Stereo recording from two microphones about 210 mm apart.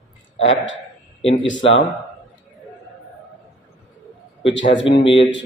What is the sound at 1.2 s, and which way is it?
Speech, 65° left (ahead or behind).